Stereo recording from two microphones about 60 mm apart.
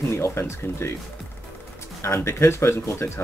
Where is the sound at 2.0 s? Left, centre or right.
Left.